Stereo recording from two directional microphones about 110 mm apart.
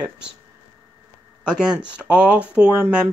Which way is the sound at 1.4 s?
10° right (ahead or behind).